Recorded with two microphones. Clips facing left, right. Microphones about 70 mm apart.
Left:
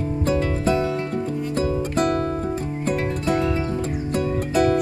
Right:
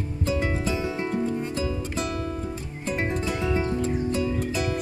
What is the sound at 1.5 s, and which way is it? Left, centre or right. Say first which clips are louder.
Music: left 7 dB; left.